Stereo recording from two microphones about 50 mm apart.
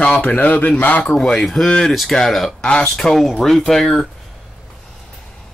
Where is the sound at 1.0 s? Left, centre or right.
Centre.